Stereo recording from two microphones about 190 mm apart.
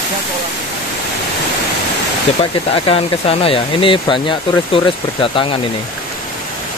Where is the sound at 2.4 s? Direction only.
30° left (ahead or behind).